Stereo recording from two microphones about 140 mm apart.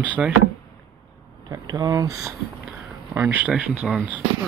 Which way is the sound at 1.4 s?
25° right (ahead or behind).